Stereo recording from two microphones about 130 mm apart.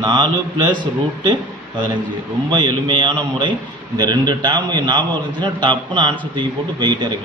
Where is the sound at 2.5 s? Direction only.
35° right (ahead or behind).